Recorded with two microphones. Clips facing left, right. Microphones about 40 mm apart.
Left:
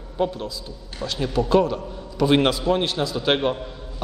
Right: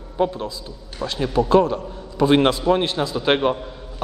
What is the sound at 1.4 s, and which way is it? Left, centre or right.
Speech, centre.